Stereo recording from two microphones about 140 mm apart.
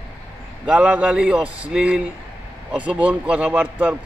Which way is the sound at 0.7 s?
10° right (ahead or behind).